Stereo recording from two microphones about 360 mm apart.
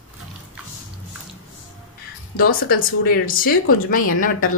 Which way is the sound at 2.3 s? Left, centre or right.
Left.